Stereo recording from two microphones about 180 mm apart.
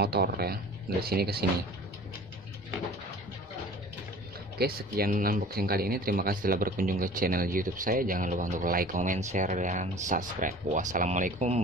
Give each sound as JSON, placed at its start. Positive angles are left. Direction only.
{"t": 0.0, "sound": "speech", "side_deg": -60}
{"t": 4.6, "sound": "speech", "side_deg": -55}